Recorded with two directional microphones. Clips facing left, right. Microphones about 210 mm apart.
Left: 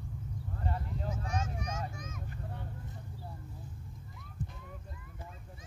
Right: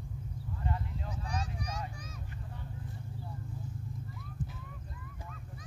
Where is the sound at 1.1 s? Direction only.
35° right (ahead or behind).